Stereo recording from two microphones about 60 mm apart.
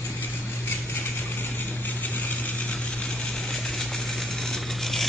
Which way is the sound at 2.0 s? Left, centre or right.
Left.